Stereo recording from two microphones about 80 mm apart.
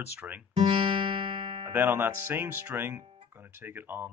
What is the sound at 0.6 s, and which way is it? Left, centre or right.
Music, right.